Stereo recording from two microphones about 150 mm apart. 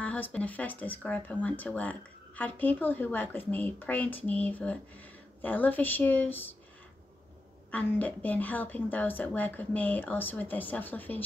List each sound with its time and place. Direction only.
0.0 s speech: 10° left (ahead or behind)
7.7 s speech: 10° left (ahead or behind)